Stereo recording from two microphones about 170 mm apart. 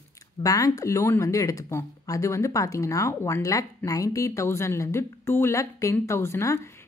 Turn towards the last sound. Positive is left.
turn(degrees=15)  # may be behind; listen again after turning